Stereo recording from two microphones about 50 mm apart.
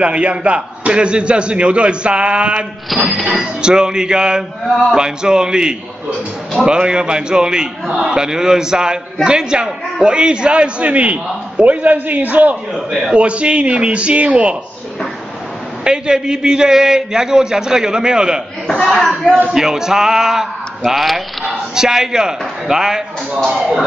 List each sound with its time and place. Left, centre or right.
0.0 s a man's voice: right
2.9 s speech: centre
3.3 s a man's voice: centre; by 12.5 s right
12.7 s speech: centre
13.1 s a man's voice: right
15.8 s speech: centre
18.9 s speech: centre
19.5 s speech: centre